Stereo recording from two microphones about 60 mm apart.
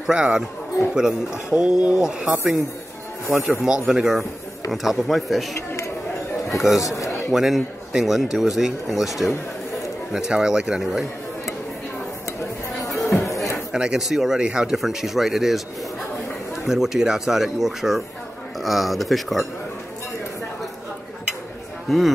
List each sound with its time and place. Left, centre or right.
0.0 s speech: centre
3.3 s speech: centre
6.8 s speech: left
7.3 s a man's voice: centre
12.9 s music: centre
13.3 s a sound: left
13.7 s speech: centre
16.6 s speech: centre
21.8 s a man's voice: centre